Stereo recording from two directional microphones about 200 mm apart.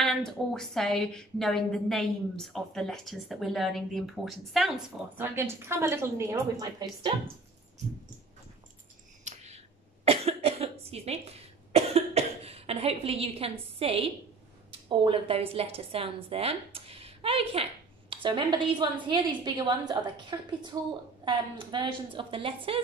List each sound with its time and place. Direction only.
0.0 s a woman's voice: centre (ahead or behind); by 7.1 s 15° right (ahead or behind)
9.2 s a sound: 35° right (ahead or behind)
10.0 s cough: 30° right (ahead or behind)
14.7 s a woman's voice: 25° right (ahead or behind)